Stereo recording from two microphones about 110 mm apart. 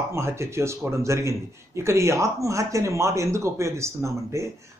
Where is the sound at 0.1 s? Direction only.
25° right (ahead or behind).